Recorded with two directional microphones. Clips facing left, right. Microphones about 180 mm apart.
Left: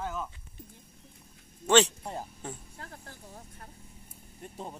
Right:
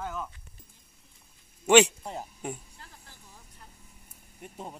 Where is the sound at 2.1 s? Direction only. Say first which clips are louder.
Right 2 dB; 10° right (ahead or behind).